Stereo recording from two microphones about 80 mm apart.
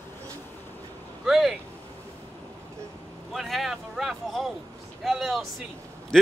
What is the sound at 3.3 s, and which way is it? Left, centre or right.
A man's voice, centre.